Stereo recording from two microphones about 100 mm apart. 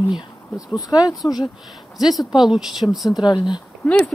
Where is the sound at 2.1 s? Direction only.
5° right (ahead or behind).